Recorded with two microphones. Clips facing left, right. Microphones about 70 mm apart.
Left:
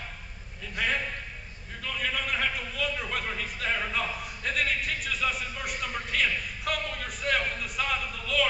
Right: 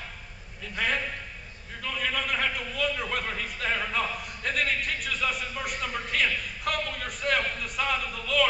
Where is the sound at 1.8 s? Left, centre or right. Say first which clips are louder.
Right 1 dB; centre.